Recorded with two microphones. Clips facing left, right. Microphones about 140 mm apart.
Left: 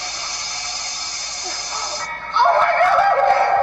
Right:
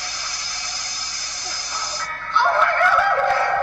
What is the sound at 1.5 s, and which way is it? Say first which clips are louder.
Music: left 3 dB; 60° left (ahead or behind).